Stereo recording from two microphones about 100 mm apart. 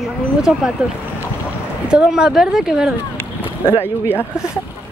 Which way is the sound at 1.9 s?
10° right (ahead or behind).